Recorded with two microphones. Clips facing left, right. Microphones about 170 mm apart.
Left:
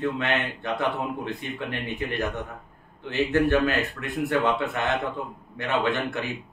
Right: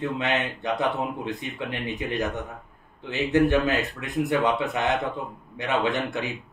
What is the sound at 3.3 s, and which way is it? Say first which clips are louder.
A man's voice: right 2 dB; 20° right (ahead or behind).